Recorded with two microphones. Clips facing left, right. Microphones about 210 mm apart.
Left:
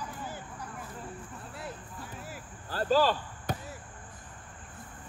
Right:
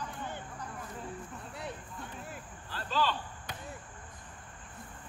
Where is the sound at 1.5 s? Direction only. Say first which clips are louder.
Even; 5° left (ahead or behind).